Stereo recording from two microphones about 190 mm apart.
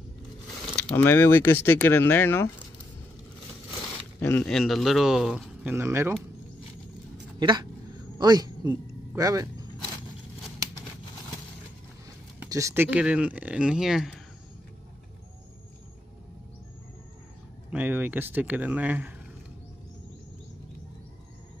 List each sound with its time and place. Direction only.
0.7 s speech: 10° left (ahead or behind)
4.2 s speech: 5° left (ahead or behind); by 6.1 s 15° right (ahead or behind)
7.3 s speech: 20° right (ahead or behind)
12.4 s speech: 15° right (ahead or behind)
17.6 s speech: 10° right (ahead or behind)